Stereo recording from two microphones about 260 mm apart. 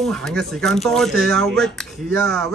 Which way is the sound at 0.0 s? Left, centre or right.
Centre.